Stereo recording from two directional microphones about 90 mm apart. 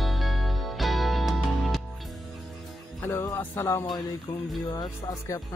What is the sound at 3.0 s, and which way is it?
Music, 30° left (ahead or behind).